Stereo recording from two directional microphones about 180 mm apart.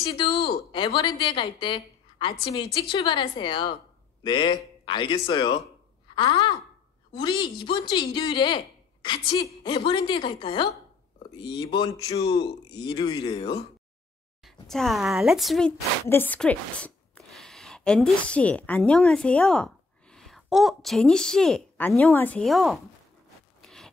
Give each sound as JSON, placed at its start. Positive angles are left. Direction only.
{"t": 0.0, "sound": "a woman's voice", "side_deg": 25}
{"t": 14.4, "sound": "a woman's voice", "side_deg": 0}
{"t": 23.6, "sound": "zipper", "side_deg": 5}